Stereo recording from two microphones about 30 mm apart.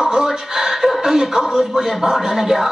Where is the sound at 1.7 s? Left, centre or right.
Centre.